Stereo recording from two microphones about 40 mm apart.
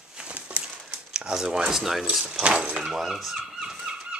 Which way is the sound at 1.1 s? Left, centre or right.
Centre.